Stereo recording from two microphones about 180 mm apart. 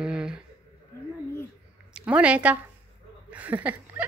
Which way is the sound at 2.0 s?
5° right (ahead or behind).